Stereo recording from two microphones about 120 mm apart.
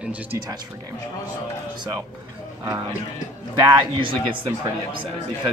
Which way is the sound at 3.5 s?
40° right (ahead or behind).